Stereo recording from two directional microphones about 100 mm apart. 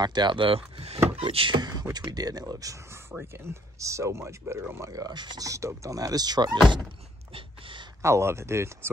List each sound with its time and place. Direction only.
0.0 s speech: 45° right (ahead or behind)
1.6 s speech: 40° right (ahead or behind)
5.4 s speech: 30° right (ahead or behind)
7.3 s a sound: 60° right (ahead or behind)
8.0 s speech: 25° right (ahead or behind)